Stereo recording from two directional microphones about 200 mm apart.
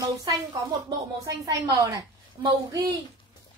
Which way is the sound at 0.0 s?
20° right (ahead or behind).